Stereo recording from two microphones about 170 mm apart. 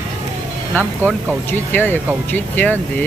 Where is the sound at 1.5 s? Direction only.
10° left (ahead or behind).